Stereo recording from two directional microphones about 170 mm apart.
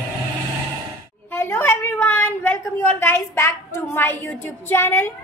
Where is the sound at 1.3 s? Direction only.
15° left (ahead or behind).